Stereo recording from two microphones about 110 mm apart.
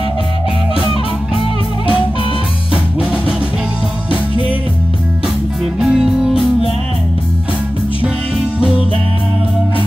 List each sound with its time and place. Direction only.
2.7 s music: 10° right (ahead or behind)
5.8 s music: 5° right (ahead or behind)
8.5 s music: 10° right (ahead or behind)